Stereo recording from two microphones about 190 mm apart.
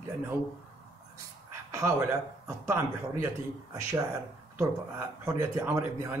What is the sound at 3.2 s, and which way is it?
Speech, 15° right (ahead or behind).